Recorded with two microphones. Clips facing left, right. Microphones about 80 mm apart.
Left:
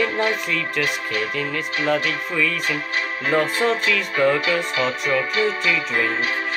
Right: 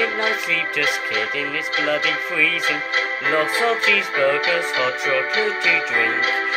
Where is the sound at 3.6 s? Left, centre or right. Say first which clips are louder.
Right 1 dB; centre.